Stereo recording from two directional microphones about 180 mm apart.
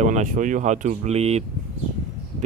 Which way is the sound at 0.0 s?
45° right (ahead or behind).